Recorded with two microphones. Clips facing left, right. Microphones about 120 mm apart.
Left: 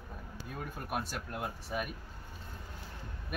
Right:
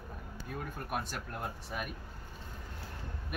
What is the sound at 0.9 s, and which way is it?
Speech, centre (ahead or behind).